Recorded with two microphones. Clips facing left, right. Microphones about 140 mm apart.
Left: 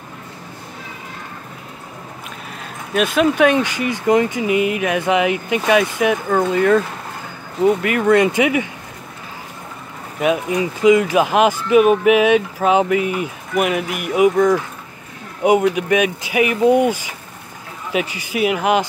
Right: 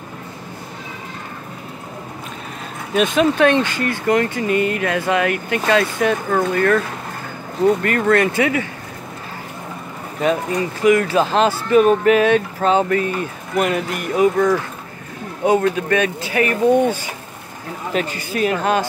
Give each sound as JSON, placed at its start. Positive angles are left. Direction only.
{"t": 3.0, "sound": "speech", "side_deg": 5}
{"t": 6.5, "sound": "speech", "side_deg": 15}
{"t": 10.2, "sound": "speech", "side_deg": 10}